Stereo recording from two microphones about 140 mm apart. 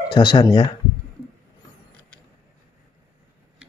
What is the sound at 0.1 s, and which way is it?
Speech, 35° left (ahead or behind).